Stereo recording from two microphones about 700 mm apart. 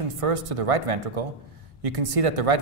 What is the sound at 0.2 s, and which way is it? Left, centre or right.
Speech, right.